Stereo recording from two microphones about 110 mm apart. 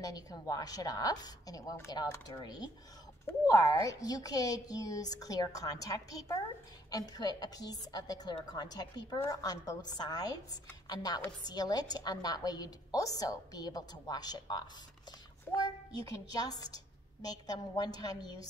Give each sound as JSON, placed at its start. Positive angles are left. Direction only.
{"t": 0.0, "sound": "a woman's voice", "side_deg": 35}